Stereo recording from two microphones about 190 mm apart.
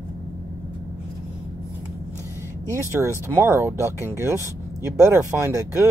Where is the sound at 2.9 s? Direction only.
15° right (ahead or behind).